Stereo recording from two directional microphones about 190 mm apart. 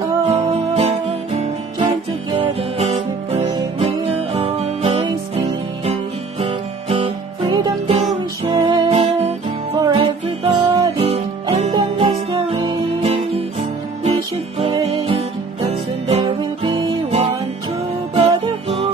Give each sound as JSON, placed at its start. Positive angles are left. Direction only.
{"t": 0.3, "sound": "music", "side_deg": -35}
{"t": 6.4, "sound": "music", "side_deg": -30}